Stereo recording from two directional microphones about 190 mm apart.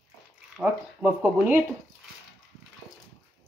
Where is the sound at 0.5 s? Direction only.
10° right (ahead or behind).